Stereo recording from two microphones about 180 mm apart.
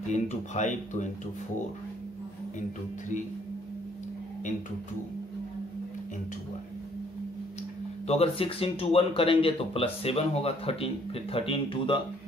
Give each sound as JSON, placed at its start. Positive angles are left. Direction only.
{"t": 0.1, "sound": "speech", "side_deg": 40}
{"t": 8.1, "sound": "speech", "side_deg": 30}